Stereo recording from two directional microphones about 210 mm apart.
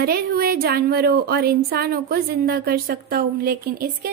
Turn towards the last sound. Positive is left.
turn(degrees=-45)  # may be behind; listen again after turning